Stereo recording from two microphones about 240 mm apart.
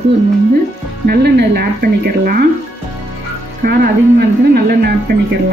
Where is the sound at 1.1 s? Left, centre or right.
Right.